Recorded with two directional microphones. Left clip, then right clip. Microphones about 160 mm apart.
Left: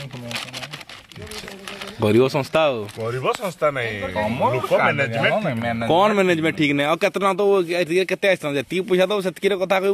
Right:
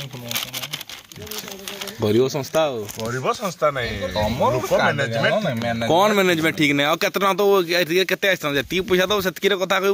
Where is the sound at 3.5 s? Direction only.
20° left (ahead or behind).